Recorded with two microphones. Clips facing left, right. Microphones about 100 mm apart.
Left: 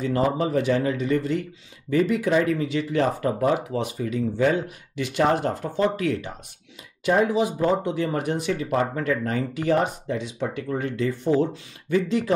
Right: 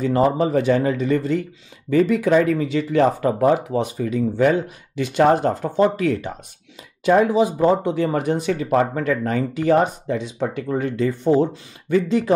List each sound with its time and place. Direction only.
0.0 s speech: 40° right (ahead or behind)
2.2 s speech: 50° right (ahead or behind); by 3.9 s 35° right (ahead or behind)
4.0 s speech: 55° right (ahead or behind)
4.9 s speech: 35° right (ahead or behind)
7.2 s speech: 30° right (ahead or behind); by 11.1 s 45° right (ahead or behind)
11.2 s speech: 20° right (ahead or behind)
11.9 s speech: 35° right (ahead or behind)